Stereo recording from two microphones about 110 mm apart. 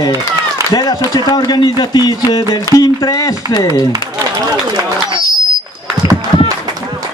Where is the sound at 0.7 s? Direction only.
35° left (ahead or behind).